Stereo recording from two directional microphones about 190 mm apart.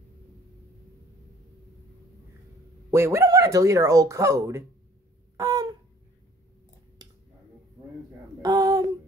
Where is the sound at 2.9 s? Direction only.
15° right (ahead or behind).